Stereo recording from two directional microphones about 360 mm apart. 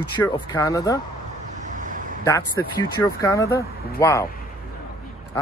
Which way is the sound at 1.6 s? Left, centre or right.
Right.